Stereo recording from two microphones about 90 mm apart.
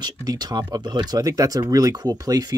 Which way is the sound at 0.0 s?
50° right (ahead or behind).